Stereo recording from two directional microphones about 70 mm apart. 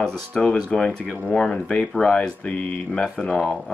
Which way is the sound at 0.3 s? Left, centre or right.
Centre.